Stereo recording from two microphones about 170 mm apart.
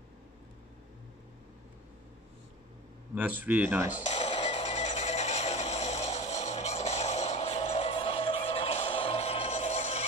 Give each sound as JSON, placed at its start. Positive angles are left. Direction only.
{"t": 3.2, "sound": "speech", "side_deg": -10}
{"t": 4.1, "sound": "music", "side_deg": 40}